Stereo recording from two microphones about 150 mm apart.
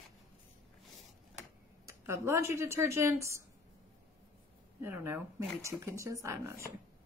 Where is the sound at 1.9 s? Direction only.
20° right (ahead or behind).